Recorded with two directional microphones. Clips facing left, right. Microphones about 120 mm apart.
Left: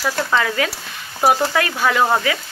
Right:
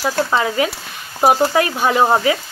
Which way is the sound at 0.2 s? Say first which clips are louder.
Right 2 dB; 20° right (ahead or behind).